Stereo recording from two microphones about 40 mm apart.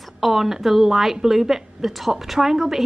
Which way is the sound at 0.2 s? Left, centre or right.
Centre.